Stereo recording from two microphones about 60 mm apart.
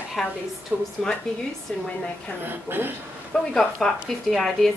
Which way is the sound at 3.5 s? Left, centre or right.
Centre.